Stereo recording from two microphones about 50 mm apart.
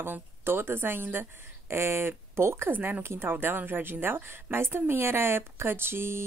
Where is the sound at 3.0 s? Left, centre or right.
Right.